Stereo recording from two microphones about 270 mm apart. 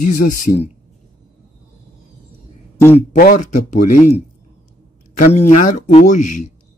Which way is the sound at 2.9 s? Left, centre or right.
Left.